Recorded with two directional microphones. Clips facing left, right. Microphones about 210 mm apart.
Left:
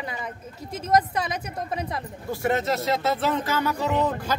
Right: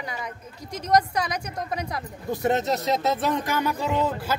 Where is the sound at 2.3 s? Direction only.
20° right (ahead or behind).